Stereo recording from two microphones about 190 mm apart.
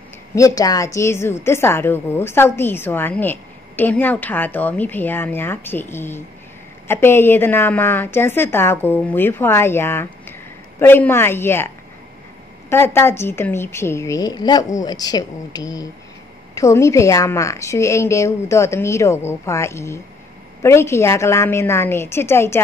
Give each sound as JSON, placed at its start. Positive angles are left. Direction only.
{"t": 0.4, "sound": "a woman's voice", "side_deg": 20}